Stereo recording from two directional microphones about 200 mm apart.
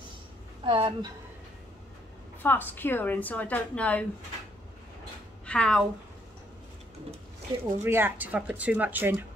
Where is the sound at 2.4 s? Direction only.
10° left (ahead or behind).